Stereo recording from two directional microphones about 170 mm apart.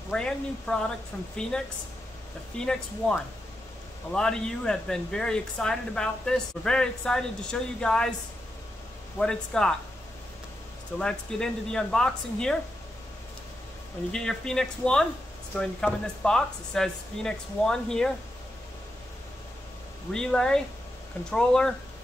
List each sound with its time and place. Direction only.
0.1 s speech: 5° left (ahead or behind)
9.2 s speech: 5° left (ahead or behind)
11.0 s speech: 5° left (ahead or behind)
14.1 s speech: 5° left (ahead or behind)
20.1 s speech: 5° left (ahead or behind)